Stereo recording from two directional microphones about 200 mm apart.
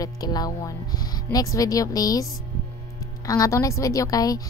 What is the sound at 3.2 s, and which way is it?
A woman's voice, 15° left (ahead or behind).